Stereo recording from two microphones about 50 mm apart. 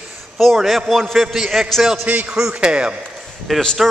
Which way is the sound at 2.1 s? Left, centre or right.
Right.